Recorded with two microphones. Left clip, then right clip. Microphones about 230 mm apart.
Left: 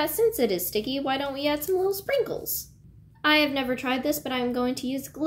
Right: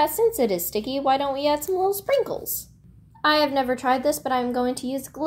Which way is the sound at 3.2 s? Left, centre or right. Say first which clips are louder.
Right 2 dB; centre.